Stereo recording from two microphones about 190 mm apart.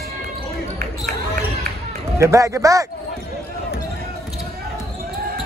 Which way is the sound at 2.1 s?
15° right (ahead or behind).